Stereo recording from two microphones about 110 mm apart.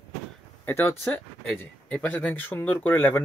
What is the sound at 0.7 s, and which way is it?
Speech, 20° left (ahead or behind).